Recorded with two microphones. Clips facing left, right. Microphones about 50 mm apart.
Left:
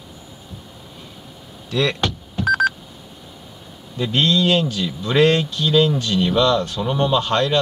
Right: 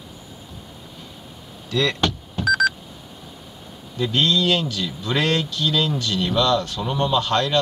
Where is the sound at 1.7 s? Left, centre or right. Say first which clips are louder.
Left 1 dB; left.